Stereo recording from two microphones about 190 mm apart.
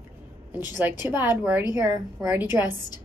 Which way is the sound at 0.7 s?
10° right (ahead or behind).